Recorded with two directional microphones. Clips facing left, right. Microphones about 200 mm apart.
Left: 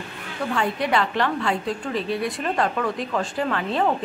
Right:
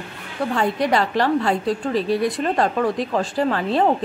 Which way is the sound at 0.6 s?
40° right (ahead or behind).